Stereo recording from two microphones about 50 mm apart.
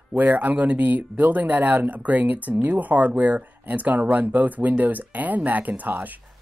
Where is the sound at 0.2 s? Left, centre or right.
Right.